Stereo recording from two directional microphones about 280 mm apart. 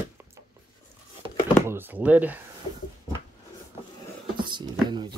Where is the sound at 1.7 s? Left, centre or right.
Centre.